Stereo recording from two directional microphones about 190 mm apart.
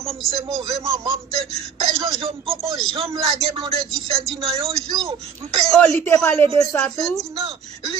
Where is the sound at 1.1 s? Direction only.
30° right (ahead or behind).